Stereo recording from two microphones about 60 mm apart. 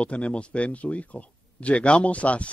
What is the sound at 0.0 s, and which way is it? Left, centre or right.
Speech, left.